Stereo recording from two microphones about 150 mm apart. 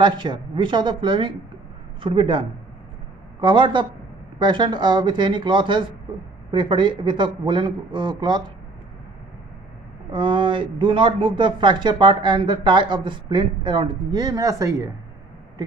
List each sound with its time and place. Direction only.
0.0 s speech: 30° right (ahead or behind)
10.1 s speech: 30° right (ahead or behind)